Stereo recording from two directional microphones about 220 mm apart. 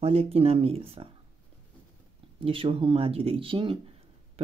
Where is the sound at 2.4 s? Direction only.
25° right (ahead or behind).